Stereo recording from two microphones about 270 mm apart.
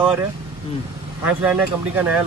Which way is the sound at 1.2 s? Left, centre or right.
Centre.